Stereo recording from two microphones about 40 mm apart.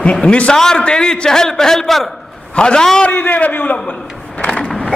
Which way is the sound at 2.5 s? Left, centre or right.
Left.